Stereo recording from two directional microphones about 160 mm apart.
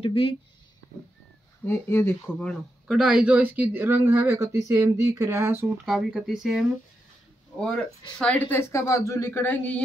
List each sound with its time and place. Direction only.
0.0 s speech: 35° left (ahead or behind)
1.7 s speech: 15° left (ahead or behind); by 5.7 s 15° right (ahead or behind)
5.9 s speech: centre (ahead or behind)